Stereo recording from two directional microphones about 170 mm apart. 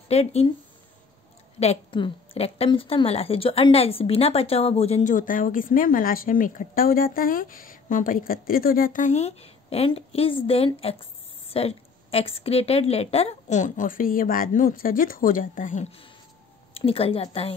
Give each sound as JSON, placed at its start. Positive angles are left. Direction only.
{"t": 0.1, "sound": "a woman's voice", "side_deg": 35}
{"t": 1.6, "sound": "a woman's voice", "side_deg": 35}